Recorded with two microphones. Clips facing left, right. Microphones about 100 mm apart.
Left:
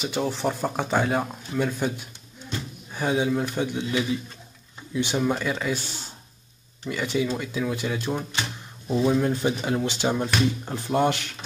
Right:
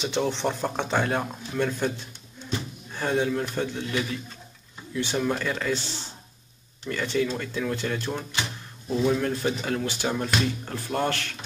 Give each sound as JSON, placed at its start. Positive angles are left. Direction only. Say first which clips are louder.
{"t": 0.0, "sound": "speech", "louder": "even", "side_deg": 5}
{"t": 6.9, "sound": "speech", "louder": "even", "side_deg": 10}